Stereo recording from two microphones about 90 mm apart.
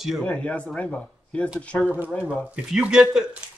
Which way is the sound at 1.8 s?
20° right (ahead or behind).